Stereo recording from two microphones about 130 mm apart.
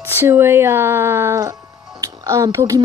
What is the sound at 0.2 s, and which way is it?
Speech, 20° right (ahead or behind).